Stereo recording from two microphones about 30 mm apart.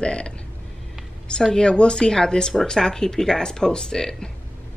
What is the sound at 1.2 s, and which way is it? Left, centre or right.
Speech, left.